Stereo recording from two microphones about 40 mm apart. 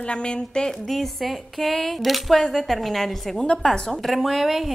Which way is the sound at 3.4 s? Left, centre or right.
Centre.